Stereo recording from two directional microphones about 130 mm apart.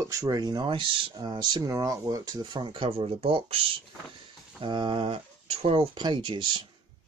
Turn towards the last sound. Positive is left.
turn(degrees=-40)  # may be behind; listen again after turning